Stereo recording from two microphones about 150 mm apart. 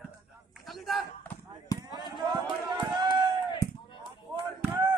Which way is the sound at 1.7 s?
25° left (ahead or behind).